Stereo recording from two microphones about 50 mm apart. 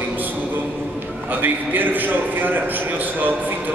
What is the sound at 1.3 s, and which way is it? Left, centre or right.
A man's voice, right.